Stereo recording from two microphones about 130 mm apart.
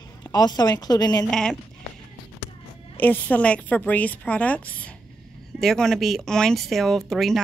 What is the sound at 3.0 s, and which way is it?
A woman's voice, 15° left (ahead or behind).